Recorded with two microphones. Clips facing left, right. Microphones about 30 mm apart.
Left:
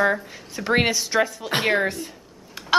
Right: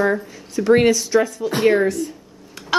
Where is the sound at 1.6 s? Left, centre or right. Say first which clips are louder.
Right 6 dB; left.